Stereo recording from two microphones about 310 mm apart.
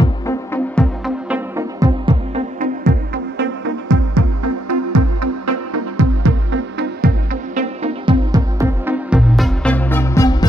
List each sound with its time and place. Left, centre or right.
0.0 s music: centre
1.8 s music: centre
2.8 s music: right
4.1 s music: right
7.5 s music: centre